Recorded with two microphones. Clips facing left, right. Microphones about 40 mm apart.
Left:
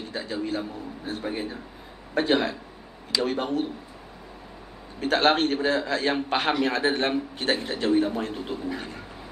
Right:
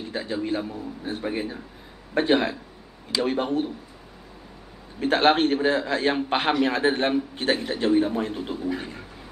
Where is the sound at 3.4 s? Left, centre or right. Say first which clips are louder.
Right 2 dB; right.